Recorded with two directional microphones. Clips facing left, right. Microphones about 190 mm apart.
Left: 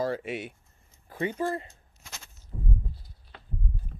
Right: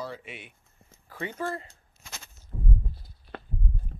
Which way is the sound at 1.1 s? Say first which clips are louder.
Left 4 dB; 15° left (ahead or behind).